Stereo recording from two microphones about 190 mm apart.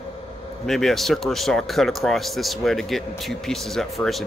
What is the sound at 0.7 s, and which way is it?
Speech, centre (ahead or behind).